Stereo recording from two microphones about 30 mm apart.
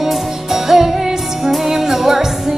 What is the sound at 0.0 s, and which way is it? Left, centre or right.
Music, centre.